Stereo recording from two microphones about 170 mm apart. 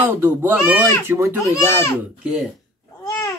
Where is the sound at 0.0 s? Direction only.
10° right (ahead or behind).